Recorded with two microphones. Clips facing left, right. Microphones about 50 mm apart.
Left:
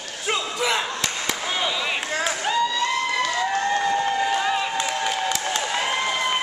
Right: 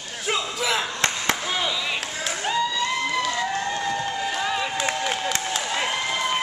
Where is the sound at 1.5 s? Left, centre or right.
Centre.